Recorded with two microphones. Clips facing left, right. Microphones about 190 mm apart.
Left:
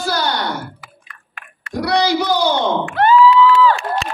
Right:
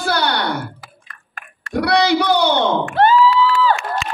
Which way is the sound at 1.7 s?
65° right (ahead or behind).